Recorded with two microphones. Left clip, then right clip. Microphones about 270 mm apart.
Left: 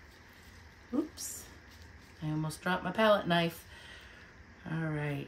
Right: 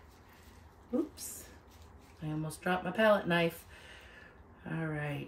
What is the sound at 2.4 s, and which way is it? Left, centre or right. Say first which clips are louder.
Speech: even; centre.